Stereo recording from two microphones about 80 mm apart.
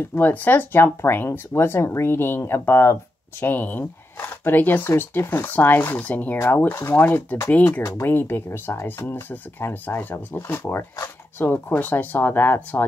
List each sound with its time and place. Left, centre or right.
0.2 s speech: left